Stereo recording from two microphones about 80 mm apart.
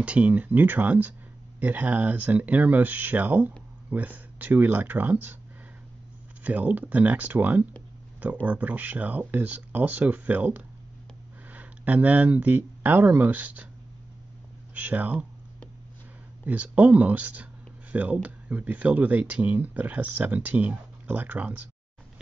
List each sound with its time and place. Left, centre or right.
0.0 s speech: centre
6.4 s speech: centre
14.7 s speech: right
16.4 s speech: centre